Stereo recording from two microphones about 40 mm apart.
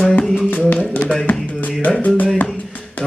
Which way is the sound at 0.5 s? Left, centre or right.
Left.